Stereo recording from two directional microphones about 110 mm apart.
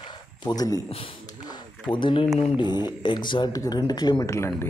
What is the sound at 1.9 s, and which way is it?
Speech, 50° left (ahead or behind).